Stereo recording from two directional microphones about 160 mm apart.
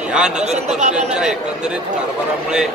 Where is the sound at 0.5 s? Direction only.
45° right (ahead or behind).